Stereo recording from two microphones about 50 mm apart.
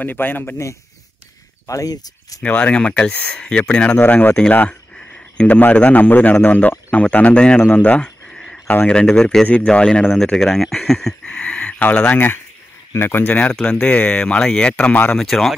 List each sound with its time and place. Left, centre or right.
0.0 s a man's voice: left
2.4 s speech: left
4.0 s a man's voice: left
4.9 s a sound: left
5.6 s a man's voice: left
8.3 s a sound: centre
8.8 s speech: centre
11.2 s a sound: left
12.1 s speech: left
13.3 s speech: left
14.2 s speech: centre
15.1 s speech: centre